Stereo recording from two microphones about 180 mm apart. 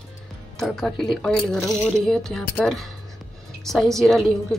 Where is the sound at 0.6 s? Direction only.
Centre (ahead or behind).